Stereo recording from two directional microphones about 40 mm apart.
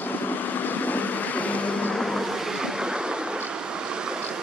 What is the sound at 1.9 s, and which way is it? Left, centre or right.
Vehicle, centre.